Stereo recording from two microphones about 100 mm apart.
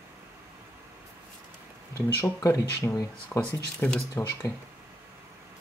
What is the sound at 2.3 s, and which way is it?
Speech, 30° left (ahead or behind).